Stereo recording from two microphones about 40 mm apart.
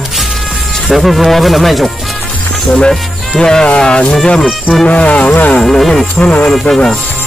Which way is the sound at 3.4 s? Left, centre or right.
Centre.